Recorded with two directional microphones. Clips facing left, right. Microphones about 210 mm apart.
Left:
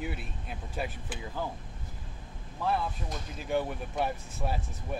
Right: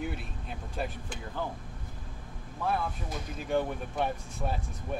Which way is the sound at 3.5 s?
5° left (ahead or behind).